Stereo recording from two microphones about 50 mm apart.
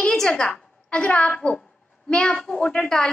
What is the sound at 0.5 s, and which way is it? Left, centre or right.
A woman's voice, left.